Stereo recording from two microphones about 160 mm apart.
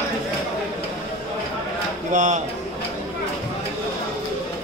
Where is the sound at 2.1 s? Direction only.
50° right (ahead or behind).